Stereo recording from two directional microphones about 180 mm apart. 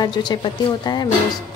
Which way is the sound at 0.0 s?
25° left (ahead or behind).